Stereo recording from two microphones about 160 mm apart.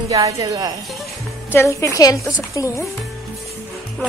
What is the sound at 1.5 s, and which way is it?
A woman's voice, 15° left (ahead or behind).